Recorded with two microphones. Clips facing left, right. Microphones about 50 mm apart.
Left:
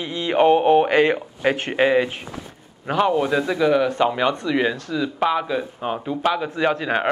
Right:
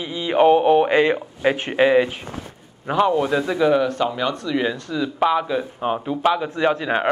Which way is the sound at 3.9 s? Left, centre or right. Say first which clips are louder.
Left 3 dB; centre.